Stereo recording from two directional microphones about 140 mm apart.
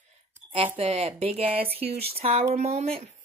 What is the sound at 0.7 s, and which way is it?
Speech, 45° right (ahead or behind).